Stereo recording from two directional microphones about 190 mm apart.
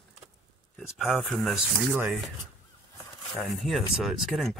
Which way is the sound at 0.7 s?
Centre (ahead or behind).